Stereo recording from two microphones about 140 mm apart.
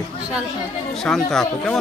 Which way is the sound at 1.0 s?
5° left (ahead or behind).